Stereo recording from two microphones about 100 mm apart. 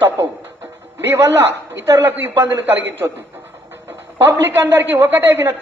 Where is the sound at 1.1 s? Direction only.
25° right (ahead or behind).